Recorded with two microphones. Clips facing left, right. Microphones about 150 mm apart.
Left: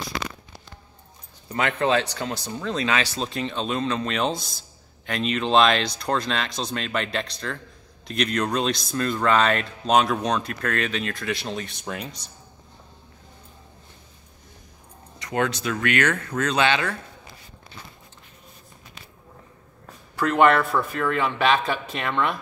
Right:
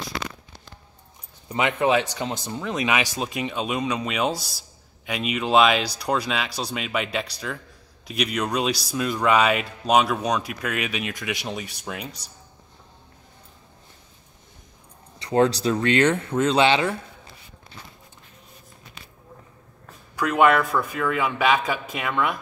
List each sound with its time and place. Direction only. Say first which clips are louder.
1.5 s speech: right 1 dB; 15° right (ahead or behind)
15.1 s speech: right 5 dB; 30° right (ahead or behind)
20.2 s speech: even; 5° right (ahead or behind)